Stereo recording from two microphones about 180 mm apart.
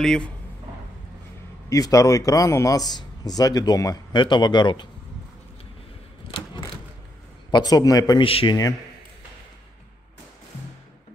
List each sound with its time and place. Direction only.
0.0 s speech: 5° left (ahead or behind)
1.7 s a man's voice: 20° left (ahead or behind)
7.5 s a man's voice: 20° left (ahead or behind)